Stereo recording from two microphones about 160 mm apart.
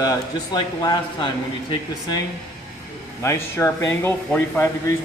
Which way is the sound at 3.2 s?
15° left (ahead or behind).